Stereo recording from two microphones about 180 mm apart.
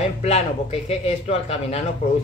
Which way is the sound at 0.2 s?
35° left (ahead or behind).